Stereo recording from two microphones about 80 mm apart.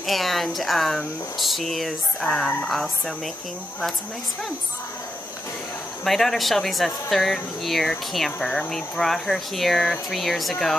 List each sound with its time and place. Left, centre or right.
0.0 s speech: centre
6.0 s speech: centre